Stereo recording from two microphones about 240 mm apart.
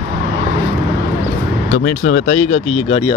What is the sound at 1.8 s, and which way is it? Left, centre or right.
Speech, left.